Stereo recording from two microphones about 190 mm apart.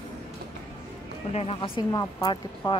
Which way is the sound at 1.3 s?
30° left (ahead or behind).